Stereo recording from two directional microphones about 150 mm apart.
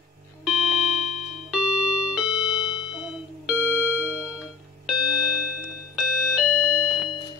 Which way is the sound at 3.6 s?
15° left (ahead or behind).